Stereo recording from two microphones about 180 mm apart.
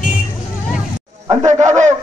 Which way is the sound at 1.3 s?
20° right (ahead or behind).